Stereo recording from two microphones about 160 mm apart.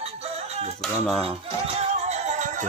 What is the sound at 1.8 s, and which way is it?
Music, 45° right (ahead or behind).